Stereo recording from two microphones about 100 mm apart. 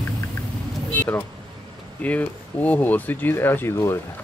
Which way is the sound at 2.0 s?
15° left (ahead or behind).